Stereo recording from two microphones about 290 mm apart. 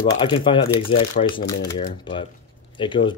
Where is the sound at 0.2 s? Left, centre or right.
Centre.